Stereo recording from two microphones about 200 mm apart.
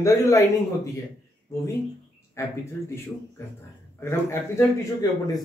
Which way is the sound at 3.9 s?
10° left (ahead or behind).